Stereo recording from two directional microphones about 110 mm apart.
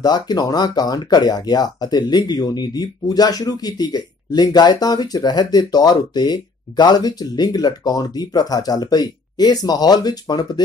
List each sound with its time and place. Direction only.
0.0 s speech: 40° left (ahead or behind)